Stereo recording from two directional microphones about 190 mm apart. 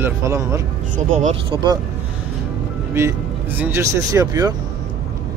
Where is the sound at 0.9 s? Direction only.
35° right (ahead or behind).